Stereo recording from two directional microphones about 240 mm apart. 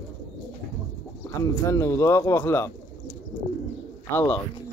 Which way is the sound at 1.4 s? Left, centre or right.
Centre.